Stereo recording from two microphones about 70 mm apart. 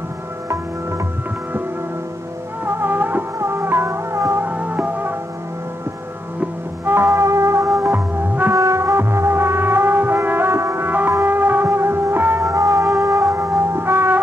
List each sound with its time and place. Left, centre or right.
2.6 s music: right
4.5 s music: right
6.9 s music: right
7.9 s music: right
8.5 s music: right
10.9 s music: right
12.4 s music: right